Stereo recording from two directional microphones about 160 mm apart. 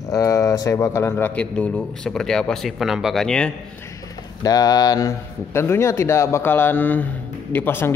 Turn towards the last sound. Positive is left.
turn(degrees=15)  # may be behind; listen again after turning